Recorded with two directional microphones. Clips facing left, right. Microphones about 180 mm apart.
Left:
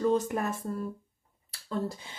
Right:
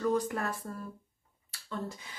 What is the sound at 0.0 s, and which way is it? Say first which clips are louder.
Speech: left 3 dB; 20° left (ahead or behind).